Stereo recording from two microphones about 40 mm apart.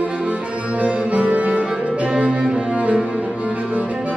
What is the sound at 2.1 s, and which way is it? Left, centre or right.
Cello, right.